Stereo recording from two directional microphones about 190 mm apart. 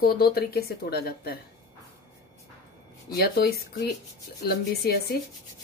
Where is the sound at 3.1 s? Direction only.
55° left (ahead or behind).